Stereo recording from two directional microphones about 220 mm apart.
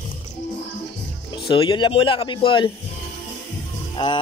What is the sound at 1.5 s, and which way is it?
Speech, 20° left (ahead or behind).